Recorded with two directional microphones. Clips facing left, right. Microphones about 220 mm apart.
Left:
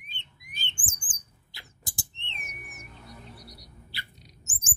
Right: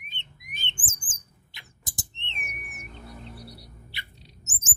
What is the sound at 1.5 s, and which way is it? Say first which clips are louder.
Rodents: left 1 dB; 20° right (ahead or behind).